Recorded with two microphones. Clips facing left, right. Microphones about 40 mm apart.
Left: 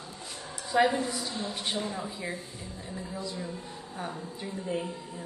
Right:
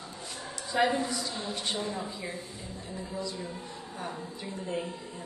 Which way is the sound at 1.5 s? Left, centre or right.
Centre.